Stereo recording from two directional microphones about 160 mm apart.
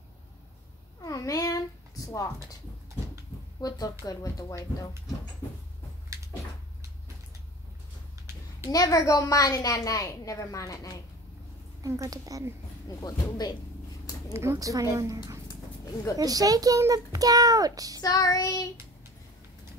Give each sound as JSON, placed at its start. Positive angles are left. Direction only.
{"t": 1.0, "sound": "a sound", "side_deg": 20}
{"t": 2.0, "sound": "speech", "side_deg": 20}
{"t": 3.6, "sound": "a woman's voice", "side_deg": 20}
{"t": 8.6, "sound": "a woman's voice", "side_deg": 20}
{"t": 11.8, "sound": "a child's voice", "side_deg": -20}
{"t": 12.8, "sound": "a woman's voice", "side_deg": 25}
{"t": 14.3, "sound": "a child's voice", "side_deg": -15}
{"t": 15.4, "sound": "dog", "side_deg": 20}
{"t": 16.2, "sound": "a child's voice", "side_deg": -25}
{"t": 18.0, "sound": "a woman's voice", "side_deg": 25}